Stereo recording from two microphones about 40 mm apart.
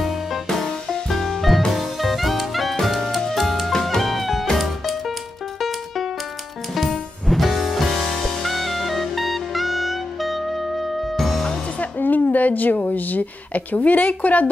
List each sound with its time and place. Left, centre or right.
0.5 s music: centre
3.7 s music: centre
4.0 s music: centre
6.7 s music: centre
12.0 s a sound: left